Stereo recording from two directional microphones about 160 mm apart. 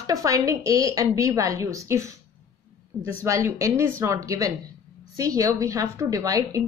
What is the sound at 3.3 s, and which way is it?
A woman's voice, 20° right (ahead or behind).